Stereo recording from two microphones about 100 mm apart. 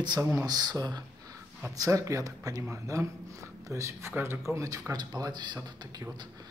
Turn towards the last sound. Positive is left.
turn(degrees=-50)  # may be behind; listen again after turning